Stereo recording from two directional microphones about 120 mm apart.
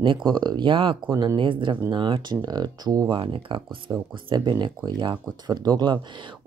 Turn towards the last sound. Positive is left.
turn(degrees=-40)  # may be behind; listen again after turning